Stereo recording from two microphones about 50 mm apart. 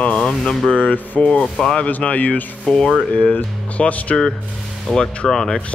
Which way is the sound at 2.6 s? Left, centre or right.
Centre.